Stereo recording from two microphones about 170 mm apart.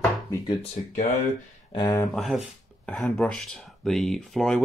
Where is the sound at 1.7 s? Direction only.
25° left (ahead or behind).